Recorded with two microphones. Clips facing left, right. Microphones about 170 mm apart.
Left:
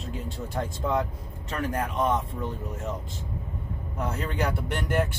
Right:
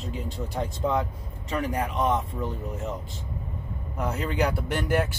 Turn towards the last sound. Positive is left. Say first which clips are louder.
# right 2 dB
turn(degrees=0)  # may be behind; listen again after turning